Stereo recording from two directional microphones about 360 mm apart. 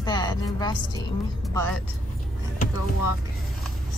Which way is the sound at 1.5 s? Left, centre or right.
Centre.